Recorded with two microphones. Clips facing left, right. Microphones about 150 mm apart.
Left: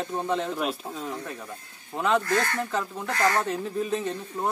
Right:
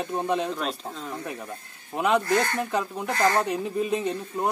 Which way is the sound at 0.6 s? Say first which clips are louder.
Left 1 dB; 10° left (ahead or behind).